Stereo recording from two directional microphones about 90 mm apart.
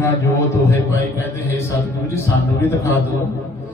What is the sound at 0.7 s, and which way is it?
A man's voice, 25° left (ahead or behind).